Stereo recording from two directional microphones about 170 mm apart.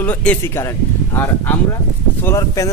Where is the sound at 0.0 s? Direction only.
10° left (ahead or behind).